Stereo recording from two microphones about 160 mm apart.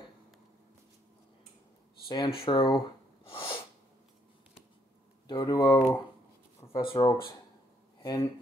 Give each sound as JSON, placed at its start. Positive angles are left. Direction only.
{"t": 2.0, "sound": "speech", "side_deg": 30}
{"t": 3.3, "sound": "sneeze", "side_deg": 35}
{"t": 5.2, "sound": "speech", "side_deg": 25}